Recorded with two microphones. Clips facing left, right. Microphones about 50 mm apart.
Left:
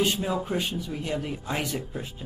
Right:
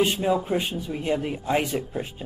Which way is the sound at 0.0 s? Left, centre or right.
Centre.